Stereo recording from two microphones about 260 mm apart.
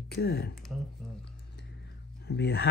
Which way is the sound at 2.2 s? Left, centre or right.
Left.